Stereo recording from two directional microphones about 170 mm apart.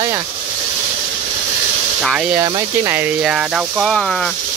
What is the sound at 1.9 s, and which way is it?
Speech, 5° right (ahead or behind).